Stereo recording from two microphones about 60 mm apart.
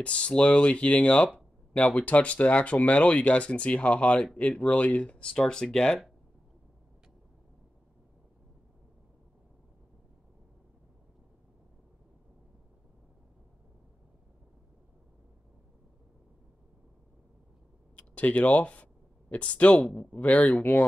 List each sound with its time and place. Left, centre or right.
0.0 s speech: centre
17.9 s a sound: left
19.3 s speech: left